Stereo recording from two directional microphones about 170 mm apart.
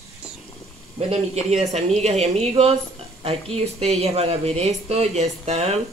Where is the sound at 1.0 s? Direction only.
40° right (ahead or behind).